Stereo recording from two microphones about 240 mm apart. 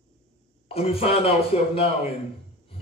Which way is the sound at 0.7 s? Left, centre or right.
Left.